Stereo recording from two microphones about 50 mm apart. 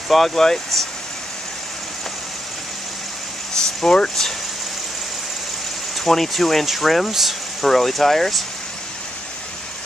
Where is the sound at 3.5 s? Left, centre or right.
Centre.